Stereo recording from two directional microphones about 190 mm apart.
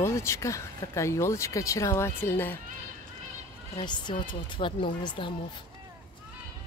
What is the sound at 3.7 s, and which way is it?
Speech, 25° left (ahead or behind).